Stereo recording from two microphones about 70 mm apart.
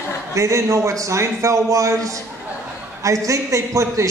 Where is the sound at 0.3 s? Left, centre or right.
Right.